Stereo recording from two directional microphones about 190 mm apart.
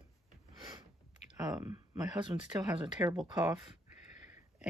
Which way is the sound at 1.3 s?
15° right (ahead or behind).